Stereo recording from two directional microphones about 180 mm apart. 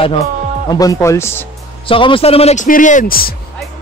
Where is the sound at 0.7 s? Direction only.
20° left (ahead or behind).